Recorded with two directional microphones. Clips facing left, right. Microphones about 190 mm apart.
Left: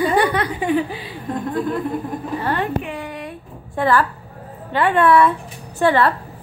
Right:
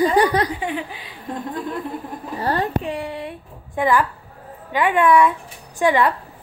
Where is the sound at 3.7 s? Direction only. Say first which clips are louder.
Left 1 dB; 15° right (ahead or behind).